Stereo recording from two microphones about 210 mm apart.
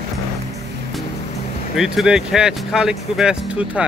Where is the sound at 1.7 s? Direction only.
Centre (ahead or behind).